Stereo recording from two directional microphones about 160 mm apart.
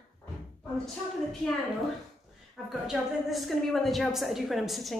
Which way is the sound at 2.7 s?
Centre (ahead or behind).